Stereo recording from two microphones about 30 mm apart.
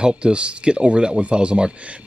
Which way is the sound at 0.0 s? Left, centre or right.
Right.